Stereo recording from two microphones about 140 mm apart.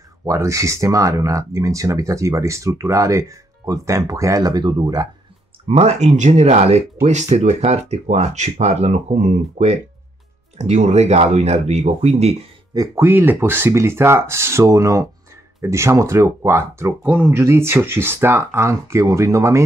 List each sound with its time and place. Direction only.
0.2 s speech: 25° right (ahead or behind)
5.7 s speech: 50° right (ahead or behind)
12.7 s speech: 25° right (ahead or behind)